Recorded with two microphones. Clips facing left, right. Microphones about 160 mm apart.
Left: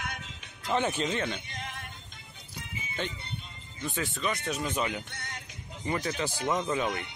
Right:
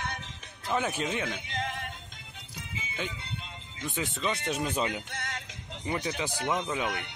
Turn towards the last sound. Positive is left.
turn(degrees=-10)  # may be behind; listen again after turning